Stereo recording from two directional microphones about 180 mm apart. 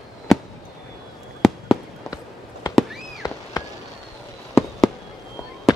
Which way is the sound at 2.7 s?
Centre (ahead or behind).